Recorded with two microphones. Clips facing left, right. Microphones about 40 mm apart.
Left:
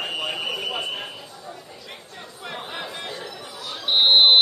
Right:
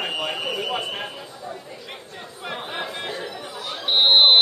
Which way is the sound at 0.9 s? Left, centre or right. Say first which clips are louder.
Right 1 dB; centre.